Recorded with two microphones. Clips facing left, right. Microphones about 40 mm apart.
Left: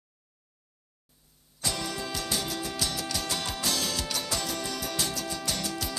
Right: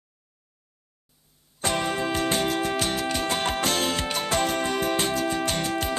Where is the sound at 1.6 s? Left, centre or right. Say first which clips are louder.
Right 8 dB; right.